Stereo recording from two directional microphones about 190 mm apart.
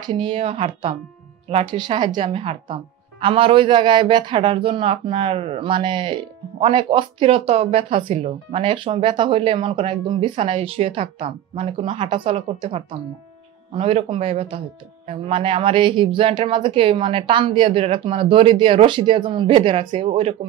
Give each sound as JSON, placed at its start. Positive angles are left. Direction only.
{"t": 0.0, "sound": "speech", "side_deg": -25}